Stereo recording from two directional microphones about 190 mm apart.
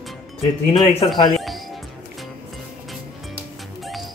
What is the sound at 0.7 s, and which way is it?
Speech, 20° left (ahead or behind).